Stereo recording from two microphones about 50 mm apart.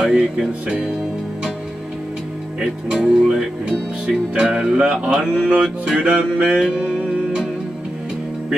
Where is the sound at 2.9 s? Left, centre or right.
Centre.